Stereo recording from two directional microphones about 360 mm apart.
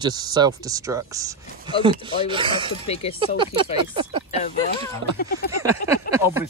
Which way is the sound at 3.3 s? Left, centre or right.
Centre.